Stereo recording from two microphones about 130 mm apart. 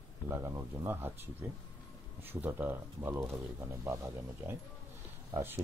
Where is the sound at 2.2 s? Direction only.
15° right (ahead or behind).